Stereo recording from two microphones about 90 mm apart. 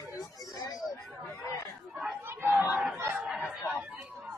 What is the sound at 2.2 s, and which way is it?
Chatter, 25° right (ahead or behind).